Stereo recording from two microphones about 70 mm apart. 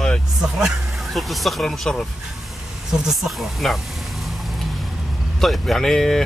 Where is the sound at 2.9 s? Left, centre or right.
Centre.